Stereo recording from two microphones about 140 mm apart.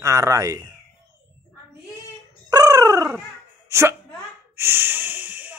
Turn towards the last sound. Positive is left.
turn(degrees=-15)  # may be behind; listen again after turning